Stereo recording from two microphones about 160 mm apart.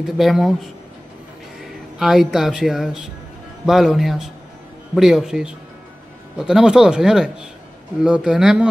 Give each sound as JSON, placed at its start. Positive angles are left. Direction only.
{"t": 0.0, "sound": "a man's voice", "side_deg": 0}
{"t": 1.6, "sound": "a man's voice", "side_deg": 0}